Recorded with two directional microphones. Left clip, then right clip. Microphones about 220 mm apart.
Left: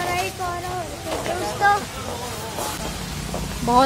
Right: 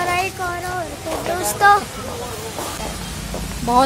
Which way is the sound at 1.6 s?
45° right (ahead or behind).